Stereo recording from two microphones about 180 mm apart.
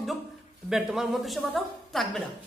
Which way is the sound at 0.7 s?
5° right (ahead or behind).